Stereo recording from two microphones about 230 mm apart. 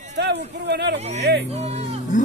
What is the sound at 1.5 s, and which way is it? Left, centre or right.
Music, right.